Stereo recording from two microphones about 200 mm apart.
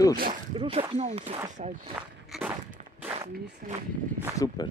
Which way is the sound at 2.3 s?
Centre (ahead or behind).